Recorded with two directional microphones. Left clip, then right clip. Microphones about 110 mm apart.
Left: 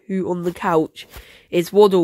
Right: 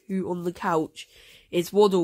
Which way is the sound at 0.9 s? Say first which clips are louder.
Left 5 dB; 5° left (ahead or behind).